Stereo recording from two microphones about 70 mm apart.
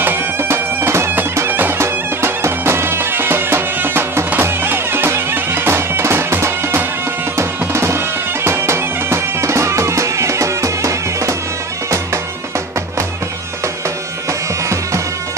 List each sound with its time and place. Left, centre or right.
0.0 s bagpipes: right
1.5 s bagpipes: right
4.3 s music: right